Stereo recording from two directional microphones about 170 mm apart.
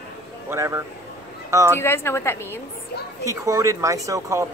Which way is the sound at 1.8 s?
15° left (ahead or behind).